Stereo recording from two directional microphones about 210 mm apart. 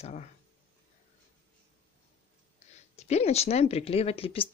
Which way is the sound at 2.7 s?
30° left (ahead or behind).